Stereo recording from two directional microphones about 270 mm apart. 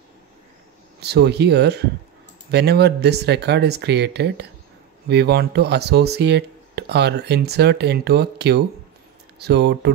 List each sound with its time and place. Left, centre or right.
1.0 s speech: right